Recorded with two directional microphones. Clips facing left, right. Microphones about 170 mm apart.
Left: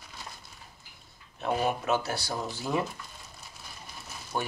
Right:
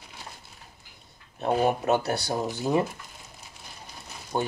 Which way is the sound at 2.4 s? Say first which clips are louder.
Right 6 dB; 20° right (ahead or behind).